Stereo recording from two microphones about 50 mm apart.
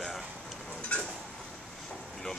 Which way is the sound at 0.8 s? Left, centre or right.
Left.